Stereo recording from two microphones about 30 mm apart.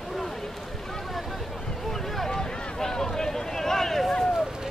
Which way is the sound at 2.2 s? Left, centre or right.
Centre.